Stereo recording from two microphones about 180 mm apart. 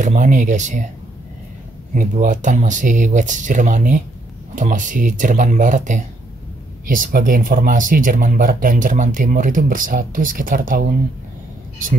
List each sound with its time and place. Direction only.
0.0 s speech: 45° right (ahead or behind)
2.0 s speech: 45° right (ahead or behind)